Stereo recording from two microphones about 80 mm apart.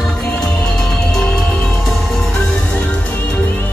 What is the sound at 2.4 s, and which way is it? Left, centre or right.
Music, centre.